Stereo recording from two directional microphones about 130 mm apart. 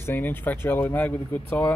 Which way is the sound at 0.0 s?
15° left (ahead or behind).